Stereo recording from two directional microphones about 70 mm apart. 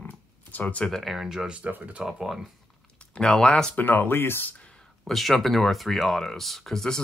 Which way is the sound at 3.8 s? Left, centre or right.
Left.